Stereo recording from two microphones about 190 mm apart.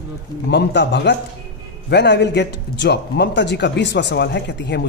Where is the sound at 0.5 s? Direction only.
65° left (ahead or behind).